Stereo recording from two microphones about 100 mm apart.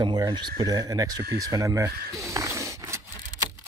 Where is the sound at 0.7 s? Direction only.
35° right (ahead or behind).